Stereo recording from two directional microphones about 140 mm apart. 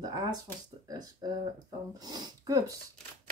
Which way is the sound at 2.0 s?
30° right (ahead or behind).